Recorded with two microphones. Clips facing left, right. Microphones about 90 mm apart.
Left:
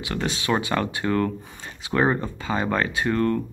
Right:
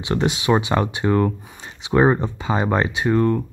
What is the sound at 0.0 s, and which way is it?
Speech, 25° right (ahead or behind).